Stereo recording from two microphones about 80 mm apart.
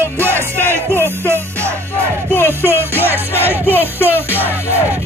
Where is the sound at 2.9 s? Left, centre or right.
Right.